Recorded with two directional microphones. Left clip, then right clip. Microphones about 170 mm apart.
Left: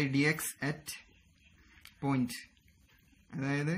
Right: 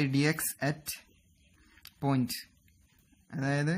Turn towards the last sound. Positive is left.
turn(degrees=-70)  # may be behind; listen again after turning